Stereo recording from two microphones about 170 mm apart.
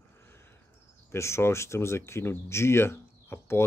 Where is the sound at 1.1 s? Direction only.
15° left (ahead or behind).